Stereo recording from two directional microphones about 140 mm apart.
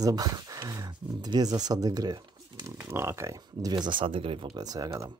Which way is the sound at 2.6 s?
20° right (ahead or behind).